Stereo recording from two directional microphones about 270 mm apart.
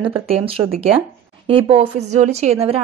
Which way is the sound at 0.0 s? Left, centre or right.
Right.